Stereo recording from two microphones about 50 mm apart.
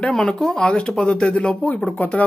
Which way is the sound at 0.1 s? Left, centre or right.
Centre.